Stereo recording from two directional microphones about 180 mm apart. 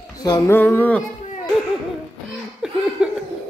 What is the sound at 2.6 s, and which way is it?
Laughter, 5° right (ahead or behind).